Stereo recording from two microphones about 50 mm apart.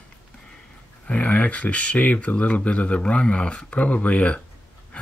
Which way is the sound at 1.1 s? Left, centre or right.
Left.